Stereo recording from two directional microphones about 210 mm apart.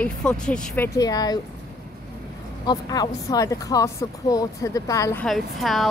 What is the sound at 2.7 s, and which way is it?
Speech, 20° left (ahead or behind).